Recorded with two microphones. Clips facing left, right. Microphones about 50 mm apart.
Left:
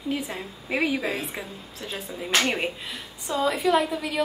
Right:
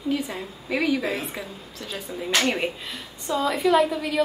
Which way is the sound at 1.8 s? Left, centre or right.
Left.